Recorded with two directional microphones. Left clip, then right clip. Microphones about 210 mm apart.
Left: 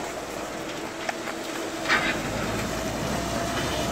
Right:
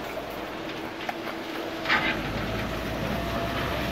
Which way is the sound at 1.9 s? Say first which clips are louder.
Left 1 dB; 35° left (ahead or behind).